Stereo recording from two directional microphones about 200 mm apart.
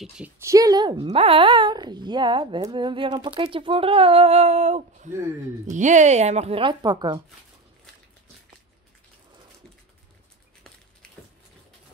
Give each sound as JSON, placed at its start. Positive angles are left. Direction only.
{"t": 0.2, "sound": "speech", "side_deg": -15}